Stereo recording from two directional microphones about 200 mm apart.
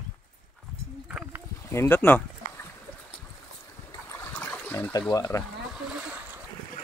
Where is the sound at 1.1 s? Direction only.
5° right (ahead or behind).